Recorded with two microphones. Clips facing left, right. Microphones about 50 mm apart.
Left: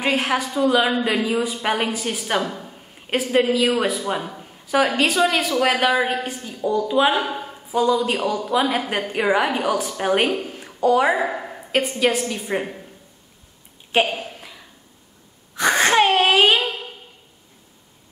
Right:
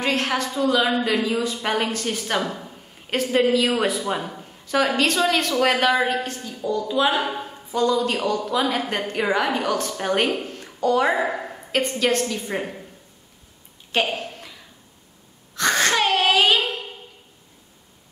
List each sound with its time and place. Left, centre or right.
0.0 s a woman's voice: centre
7.2 s a woman's voice: centre
14.1 s a sound: centre
15.5 s wail: centre